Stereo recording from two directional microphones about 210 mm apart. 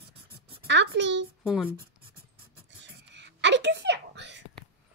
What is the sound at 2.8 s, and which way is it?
Whispering, 55° right (ahead or behind).